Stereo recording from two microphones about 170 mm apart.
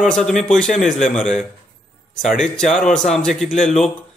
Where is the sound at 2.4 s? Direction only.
5° left (ahead or behind).